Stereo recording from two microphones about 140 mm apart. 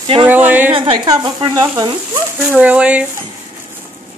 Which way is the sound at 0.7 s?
40° right (ahead or behind).